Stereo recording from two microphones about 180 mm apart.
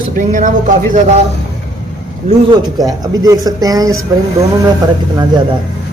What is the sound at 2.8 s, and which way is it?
A man's voice, 20° right (ahead or behind).